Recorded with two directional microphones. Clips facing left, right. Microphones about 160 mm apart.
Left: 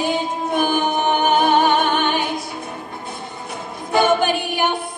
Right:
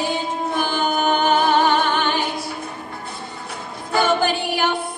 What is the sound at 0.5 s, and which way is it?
Music, 15° left (ahead or behind).